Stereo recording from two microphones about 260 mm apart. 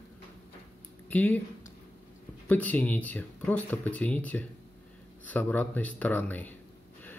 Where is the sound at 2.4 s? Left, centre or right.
Centre.